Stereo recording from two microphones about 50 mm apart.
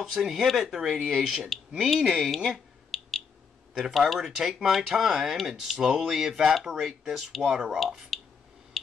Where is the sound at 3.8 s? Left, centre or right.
Centre.